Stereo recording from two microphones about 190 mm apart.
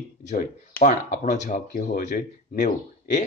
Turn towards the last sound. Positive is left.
turn(degrees=40)  # may be behind; listen again after turning